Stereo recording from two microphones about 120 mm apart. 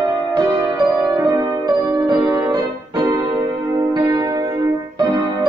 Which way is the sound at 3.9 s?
35° right (ahead or behind).